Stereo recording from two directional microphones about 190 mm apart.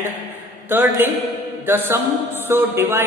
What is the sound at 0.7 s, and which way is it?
A man's voice, 10° right (ahead or behind).